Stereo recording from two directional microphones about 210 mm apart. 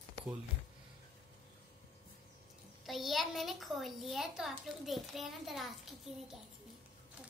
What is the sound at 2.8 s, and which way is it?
A child's voice, centre (ahead or behind).